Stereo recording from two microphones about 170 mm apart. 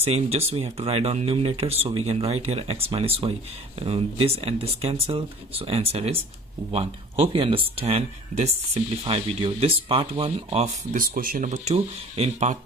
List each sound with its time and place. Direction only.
0.0 s speech: 35° right (ahead or behind)
7.3 s speech: 35° right (ahead or behind)
10.9 s speech: 55° right (ahead or behind); by 12.5 s 40° right (ahead or behind)